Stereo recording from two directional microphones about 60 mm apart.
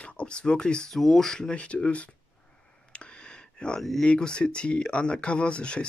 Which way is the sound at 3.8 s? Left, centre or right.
Centre.